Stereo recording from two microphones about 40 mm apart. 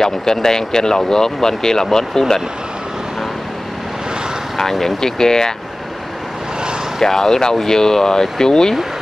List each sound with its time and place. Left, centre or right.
0.0 s speech: centre
4.6 s speech: centre
7.0 s speech: centre